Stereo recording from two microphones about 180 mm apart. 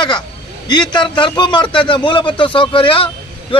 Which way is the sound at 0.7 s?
25° left (ahead or behind).